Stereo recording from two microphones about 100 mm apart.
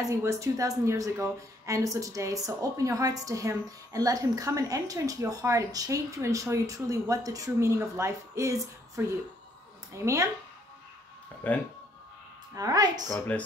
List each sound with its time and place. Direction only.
0.0 s speech: 30° right (ahead or behind)
10.0 s speech: 30° right (ahead or behind)
11.4 s speech: 15° left (ahead or behind)
12.5 s speech: 40° right (ahead or behind)